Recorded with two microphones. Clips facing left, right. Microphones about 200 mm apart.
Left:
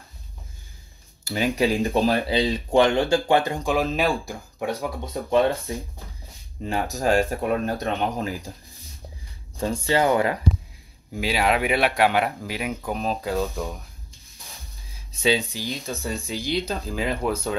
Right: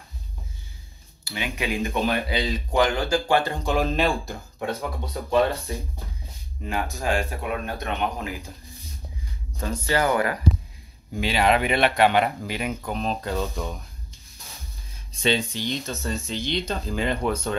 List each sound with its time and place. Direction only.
1.2 s speech: 40° left (ahead or behind); by 3.7 s 15° left (ahead or behind)
3.7 s speech: 5° left (ahead or behind)
6.6 s speech: 35° left (ahead or behind)
9.6 s speech: 25° left (ahead or behind)
11.1 s speech: 5° left (ahead or behind)
15.1 s speech: 5° left (ahead or behind)